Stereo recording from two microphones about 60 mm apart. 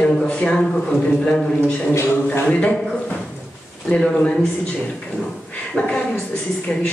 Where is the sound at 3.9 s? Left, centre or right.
Centre.